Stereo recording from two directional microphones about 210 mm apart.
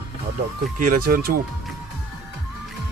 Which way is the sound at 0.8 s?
45° right (ahead or behind).